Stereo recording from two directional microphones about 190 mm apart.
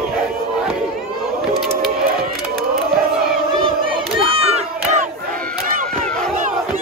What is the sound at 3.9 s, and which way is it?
Crowd, 30° right (ahead or behind).